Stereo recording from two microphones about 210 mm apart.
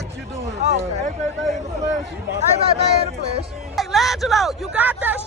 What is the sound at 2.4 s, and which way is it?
Speech, 30° right (ahead or behind).